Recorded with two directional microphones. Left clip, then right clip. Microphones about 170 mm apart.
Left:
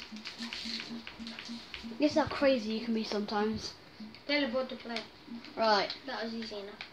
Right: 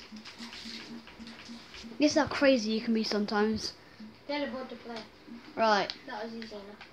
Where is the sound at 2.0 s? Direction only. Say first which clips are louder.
Right 3 dB; 55° right (ahead or behind).